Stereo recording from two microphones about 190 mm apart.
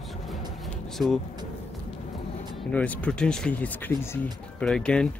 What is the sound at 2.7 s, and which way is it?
Speech, 5° left (ahead or behind).